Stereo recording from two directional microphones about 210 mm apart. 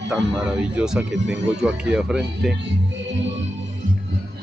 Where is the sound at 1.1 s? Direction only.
60° right (ahead or behind).